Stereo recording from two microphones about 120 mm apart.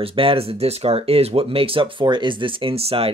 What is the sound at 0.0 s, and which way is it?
Speech, 50° right (ahead or behind).